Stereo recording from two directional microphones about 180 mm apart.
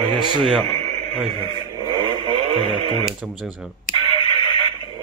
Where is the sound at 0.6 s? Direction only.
35° right (ahead or behind).